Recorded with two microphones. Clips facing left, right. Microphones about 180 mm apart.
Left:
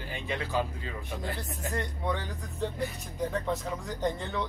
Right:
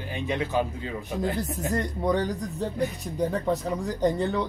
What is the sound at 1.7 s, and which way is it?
Speech, 40° right (ahead or behind).